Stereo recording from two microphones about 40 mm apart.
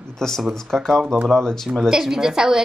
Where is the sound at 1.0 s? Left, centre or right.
Right.